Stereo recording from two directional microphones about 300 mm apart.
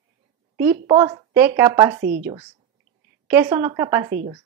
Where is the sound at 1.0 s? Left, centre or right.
Centre.